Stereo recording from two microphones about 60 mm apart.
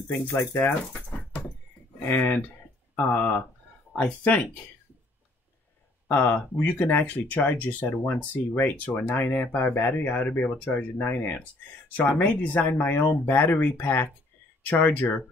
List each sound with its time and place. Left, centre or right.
0.1 s speech: left
2.0 s speech: left
6.0 s speech: left